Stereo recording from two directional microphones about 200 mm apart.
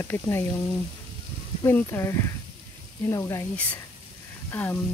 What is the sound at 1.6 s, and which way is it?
Speech, 10° left (ahead or behind).